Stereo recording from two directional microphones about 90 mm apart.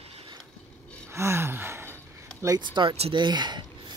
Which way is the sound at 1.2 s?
30° right (ahead or behind).